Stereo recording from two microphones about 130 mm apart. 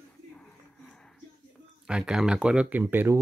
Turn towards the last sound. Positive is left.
turn(degrees=-15)  # may be behind; listen again after turning